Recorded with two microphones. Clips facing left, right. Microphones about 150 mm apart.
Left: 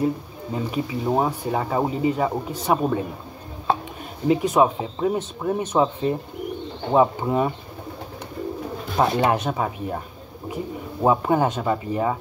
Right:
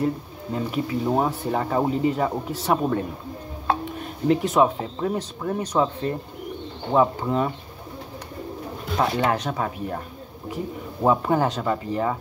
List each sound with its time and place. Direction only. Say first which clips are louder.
0.0 s speech: left 1 dB; 10° left (ahead or behind)
4.3 s speech: left 1 dB; 10° left (ahead or behind)
5.6 s speech: left 2 dB; 25° left (ahead or behind)
6.9 s speech: left 2 dB; 10° left (ahead or behind)
8.9 s speech: left 2 dB; 20° left (ahead or behind)
9.4 s speech: left 2 dB; 5° left (ahead or behind)
11.0 s speech: left 1 dB; 10° left (ahead or behind)